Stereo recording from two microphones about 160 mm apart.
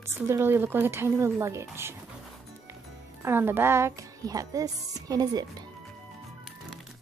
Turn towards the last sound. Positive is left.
turn(degrees=-25)  # may be behind; listen again after turning